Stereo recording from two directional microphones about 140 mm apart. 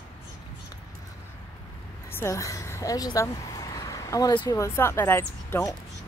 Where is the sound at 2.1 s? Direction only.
20° left (ahead or behind).